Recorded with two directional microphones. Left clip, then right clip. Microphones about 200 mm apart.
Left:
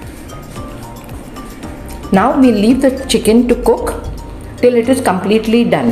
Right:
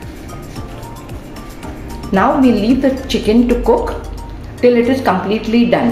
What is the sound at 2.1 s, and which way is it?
A woman's voice, 30° left (ahead or behind).